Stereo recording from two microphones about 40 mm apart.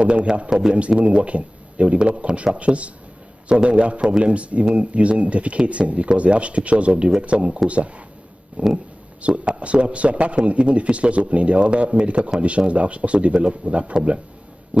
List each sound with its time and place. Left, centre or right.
0.0 s a man's voice: right